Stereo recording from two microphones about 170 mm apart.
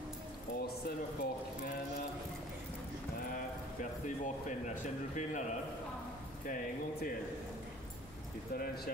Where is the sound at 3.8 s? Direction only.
45° left (ahead or behind).